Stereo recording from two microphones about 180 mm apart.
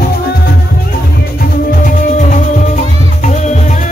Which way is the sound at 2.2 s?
45° left (ahead or behind).